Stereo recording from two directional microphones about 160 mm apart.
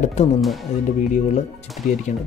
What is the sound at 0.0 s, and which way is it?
Speech, 45° left (ahead or behind).